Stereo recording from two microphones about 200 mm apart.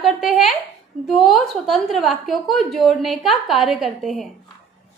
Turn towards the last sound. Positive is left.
turn(degrees=0)  # may be behind; listen again after turning